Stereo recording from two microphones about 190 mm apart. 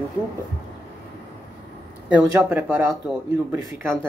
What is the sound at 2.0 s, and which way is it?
Speech, 10° right (ahead or behind).